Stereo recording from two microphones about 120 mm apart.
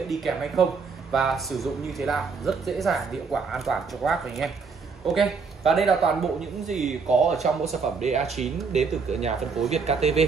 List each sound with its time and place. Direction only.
0.1 s speech: centre (ahead or behind)
8.0 s speech: 65° right (ahead or behind)